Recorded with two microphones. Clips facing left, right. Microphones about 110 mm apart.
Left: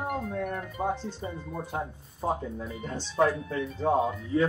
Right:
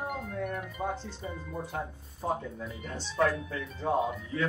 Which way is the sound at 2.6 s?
30° left (ahead or behind).